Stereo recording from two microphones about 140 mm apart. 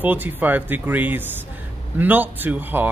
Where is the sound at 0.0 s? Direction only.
10° right (ahead or behind).